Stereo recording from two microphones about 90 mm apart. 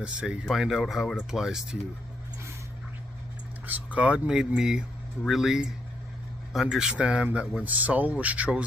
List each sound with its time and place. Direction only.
0.0 s speech: 10° right (ahead or behind)
3.6 s speech: 15° right (ahead or behind)